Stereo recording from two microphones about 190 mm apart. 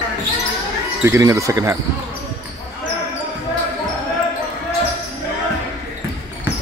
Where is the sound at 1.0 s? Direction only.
15° right (ahead or behind).